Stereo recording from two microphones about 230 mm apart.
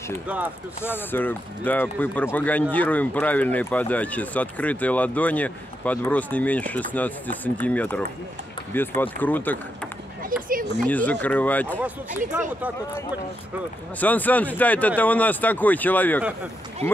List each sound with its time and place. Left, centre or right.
0.8 s speech: centre
10.8 s speech: centre
12.3 s speech: centre
13.9 s speech: centre
16.8 s speech: right